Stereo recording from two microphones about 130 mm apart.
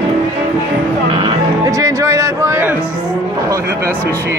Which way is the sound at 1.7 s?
25° right (ahead or behind).